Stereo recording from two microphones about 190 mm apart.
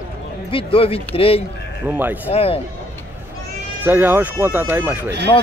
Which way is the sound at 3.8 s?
10° right (ahead or behind).